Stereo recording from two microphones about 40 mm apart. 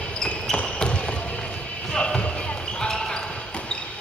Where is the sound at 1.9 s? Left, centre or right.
Left.